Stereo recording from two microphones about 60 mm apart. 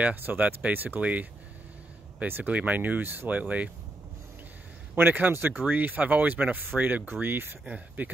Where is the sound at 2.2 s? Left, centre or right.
Right.